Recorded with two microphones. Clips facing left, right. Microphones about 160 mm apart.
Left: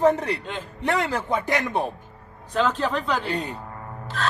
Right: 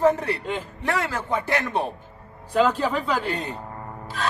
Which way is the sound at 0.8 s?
20° left (ahead or behind).